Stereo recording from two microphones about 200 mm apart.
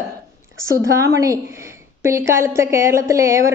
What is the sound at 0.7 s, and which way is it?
A woman's voice, 15° right (ahead or behind).